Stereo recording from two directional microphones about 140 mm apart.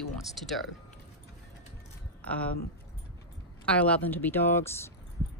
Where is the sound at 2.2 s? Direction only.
10° left (ahead or behind).